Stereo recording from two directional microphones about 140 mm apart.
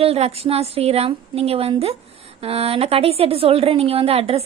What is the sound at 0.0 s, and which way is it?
A woman's voice, 45° right (ahead or behind).